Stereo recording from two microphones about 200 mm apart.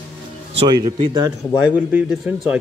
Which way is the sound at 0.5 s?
25° right (ahead or behind).